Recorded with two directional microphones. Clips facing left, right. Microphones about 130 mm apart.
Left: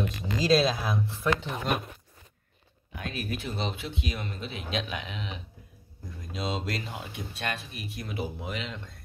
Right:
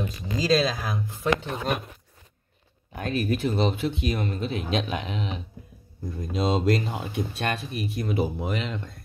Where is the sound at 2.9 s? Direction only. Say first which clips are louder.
Right 8 dB; 45° right (ahead or behind).